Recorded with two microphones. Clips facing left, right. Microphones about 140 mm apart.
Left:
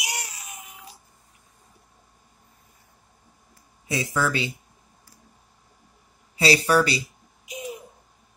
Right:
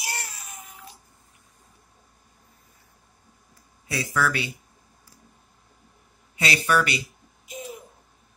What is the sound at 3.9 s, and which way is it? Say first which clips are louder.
Speech: left 1 dB; 20° left (ahead or behind).